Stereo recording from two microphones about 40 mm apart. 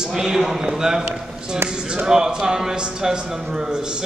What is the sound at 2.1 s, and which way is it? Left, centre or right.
A man's voice, centre.